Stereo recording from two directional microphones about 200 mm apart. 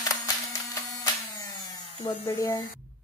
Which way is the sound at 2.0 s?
20° left (ahead or behind).